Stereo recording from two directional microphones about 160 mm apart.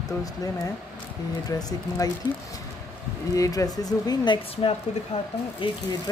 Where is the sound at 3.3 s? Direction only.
20° left (ahead or behind).